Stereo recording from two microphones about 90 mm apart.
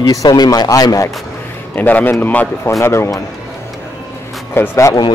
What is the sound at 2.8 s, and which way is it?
Speech, 30° left (ahead or behind).